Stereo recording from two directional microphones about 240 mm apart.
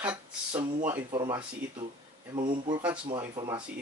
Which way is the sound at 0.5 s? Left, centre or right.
Right.